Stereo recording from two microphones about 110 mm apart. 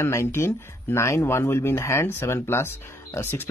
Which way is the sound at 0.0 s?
25° left (ahead or behind).